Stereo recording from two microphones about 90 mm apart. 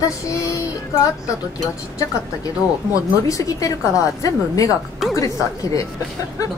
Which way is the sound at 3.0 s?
40° left (ahead or behind).